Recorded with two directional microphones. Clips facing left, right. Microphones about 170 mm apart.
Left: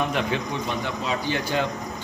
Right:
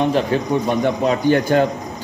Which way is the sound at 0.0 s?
35° right (ahead or behind).